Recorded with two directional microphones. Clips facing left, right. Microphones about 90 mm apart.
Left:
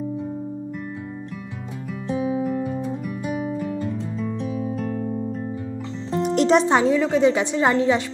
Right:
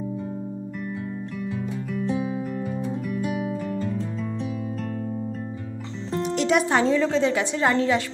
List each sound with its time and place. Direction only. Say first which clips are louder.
2.0 s music: left 6 dB; 5° left (ahead or behind)
6.3 s music: left 5 dB; 40° left (ahead or behind)
6.6 s a woman's voice: left 2 dB; 20° left (ahead or behind)